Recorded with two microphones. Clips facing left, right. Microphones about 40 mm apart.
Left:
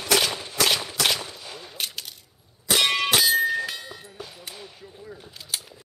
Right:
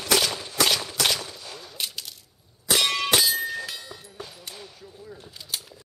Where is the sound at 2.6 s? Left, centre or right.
Centre.